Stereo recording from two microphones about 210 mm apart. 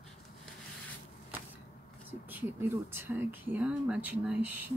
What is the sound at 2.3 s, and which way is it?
Speech, 10° right (ahead or behind).